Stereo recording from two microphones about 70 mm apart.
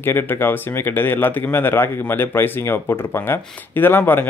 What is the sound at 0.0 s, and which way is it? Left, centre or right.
Speech, left.